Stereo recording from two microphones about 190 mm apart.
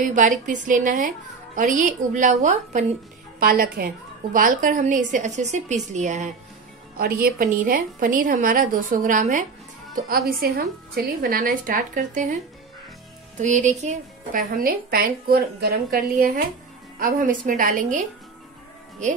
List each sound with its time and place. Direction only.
0.0 s a woman's voice: 40° right (ahead or behind)
7.0 s a woman's voice: 50° right (ahead or behind)
10.0 s a woman's voice: 55° right (ahead or behind)
13.4 s a woman's voice: 40° right (ahead or behind)